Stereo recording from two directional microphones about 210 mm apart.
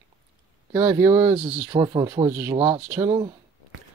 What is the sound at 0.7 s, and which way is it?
Speech, 15° right (ahead or behind).